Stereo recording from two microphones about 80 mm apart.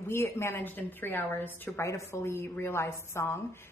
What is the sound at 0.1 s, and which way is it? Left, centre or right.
A woman's voice, left.